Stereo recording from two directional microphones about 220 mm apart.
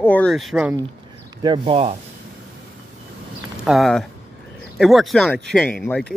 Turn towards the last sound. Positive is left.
turn(degrees=5)  # may be behind; listen again after turning